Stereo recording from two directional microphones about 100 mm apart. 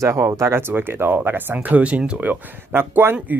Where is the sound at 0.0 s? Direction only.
30° right (ahead or behind).